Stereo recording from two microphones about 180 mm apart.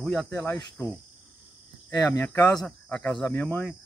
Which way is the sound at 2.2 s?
15° left (ahead or behind).